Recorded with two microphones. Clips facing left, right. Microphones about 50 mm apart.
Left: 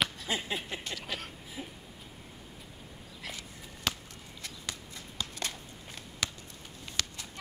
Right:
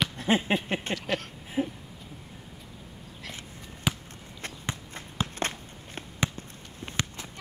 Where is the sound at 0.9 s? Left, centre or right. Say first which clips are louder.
Right 8 dB; centre.